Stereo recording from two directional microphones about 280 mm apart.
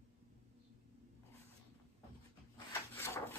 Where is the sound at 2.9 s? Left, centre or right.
Centre.